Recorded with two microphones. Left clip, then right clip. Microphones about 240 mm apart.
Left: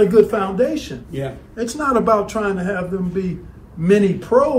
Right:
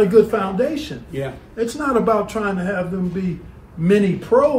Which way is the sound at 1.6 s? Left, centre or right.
Centre.